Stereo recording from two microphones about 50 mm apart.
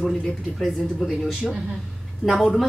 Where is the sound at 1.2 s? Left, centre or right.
Centre.